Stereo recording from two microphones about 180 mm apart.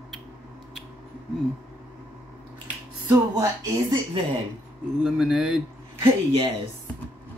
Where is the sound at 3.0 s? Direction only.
15° right (ahead or behind).